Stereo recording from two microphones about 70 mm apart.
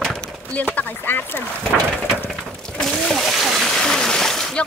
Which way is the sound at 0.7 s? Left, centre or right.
Left.